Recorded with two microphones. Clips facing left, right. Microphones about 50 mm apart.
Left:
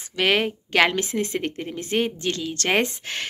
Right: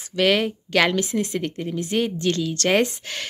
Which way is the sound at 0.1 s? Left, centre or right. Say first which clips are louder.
Right 2 dB; left.